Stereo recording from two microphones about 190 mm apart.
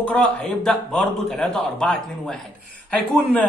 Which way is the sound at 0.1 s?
5° left (ahead or behind).